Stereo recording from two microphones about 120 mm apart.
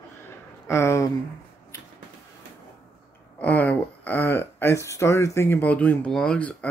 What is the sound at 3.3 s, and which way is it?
Speech, 15° left (ahead or behind).